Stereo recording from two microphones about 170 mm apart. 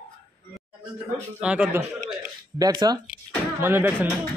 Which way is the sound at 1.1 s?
5° right (ahead or behind).